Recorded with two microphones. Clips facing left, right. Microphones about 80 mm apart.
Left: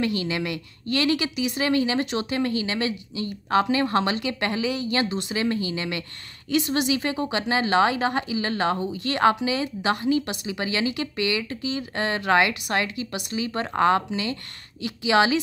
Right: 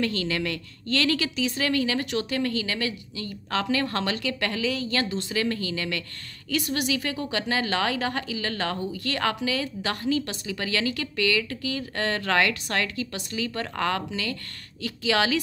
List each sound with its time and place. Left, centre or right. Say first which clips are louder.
0.0 s speech: left 1 dB; centre